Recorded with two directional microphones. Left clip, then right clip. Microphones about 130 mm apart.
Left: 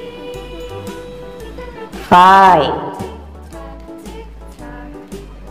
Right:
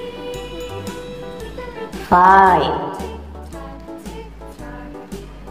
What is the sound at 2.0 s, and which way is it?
Speech, 25° left (ahead or behind).